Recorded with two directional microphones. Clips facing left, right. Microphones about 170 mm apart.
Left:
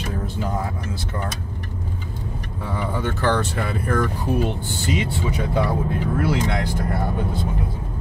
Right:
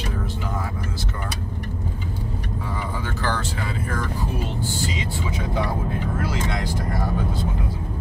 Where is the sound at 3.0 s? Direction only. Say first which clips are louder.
Left 7 dB; 60° left (ahead or behind).